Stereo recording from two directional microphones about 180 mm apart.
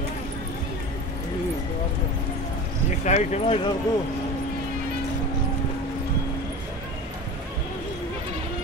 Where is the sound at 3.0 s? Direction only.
40° left (ahead or behind).